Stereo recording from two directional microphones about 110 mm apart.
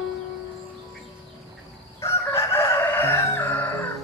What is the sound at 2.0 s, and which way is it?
Crowing, 25° left (ahead or behind).